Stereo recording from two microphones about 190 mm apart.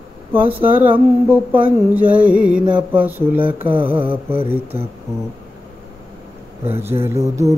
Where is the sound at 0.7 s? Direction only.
25° right (ahead or behind).